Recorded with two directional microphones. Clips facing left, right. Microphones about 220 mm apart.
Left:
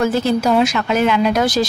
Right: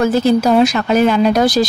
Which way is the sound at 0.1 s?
35° right (ahead or behind).